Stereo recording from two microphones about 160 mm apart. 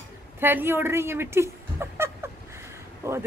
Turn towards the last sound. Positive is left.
turn(degrees=-15)  # may be behind; listen again after turning